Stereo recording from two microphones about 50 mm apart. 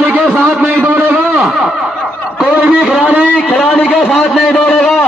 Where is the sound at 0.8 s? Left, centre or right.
Right.